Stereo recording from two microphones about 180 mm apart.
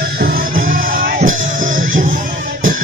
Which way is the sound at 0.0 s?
55° right (ahead or behind).